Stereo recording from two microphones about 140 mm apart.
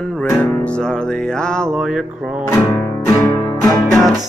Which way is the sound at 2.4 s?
20° left (ahead or behind).